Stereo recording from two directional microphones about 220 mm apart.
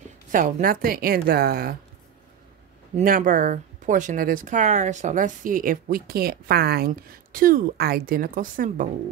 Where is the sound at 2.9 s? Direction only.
40° right (ahead or behind).